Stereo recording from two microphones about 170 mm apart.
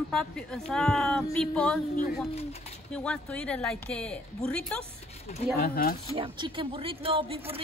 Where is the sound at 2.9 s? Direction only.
5° left (ahead or behind).